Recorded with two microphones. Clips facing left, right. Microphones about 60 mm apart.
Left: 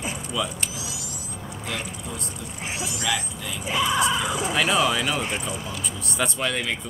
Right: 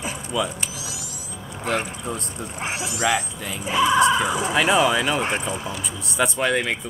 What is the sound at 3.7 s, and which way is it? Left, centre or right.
Speech, right.